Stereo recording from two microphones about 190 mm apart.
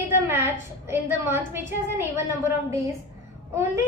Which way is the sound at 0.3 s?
10° right (ahead or behind).